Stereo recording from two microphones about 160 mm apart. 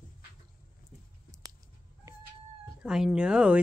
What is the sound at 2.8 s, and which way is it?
Speech, 5° right (ahead or behind).